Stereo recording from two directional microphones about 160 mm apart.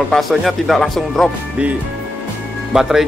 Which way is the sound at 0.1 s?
Centre (ahead or behind).